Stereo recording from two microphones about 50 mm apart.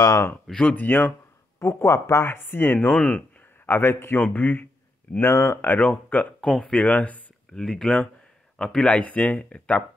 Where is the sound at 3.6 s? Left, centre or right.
Left.